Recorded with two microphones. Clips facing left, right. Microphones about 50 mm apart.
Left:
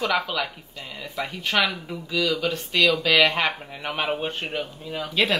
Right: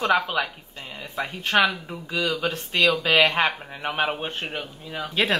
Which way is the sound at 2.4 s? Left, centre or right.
Right.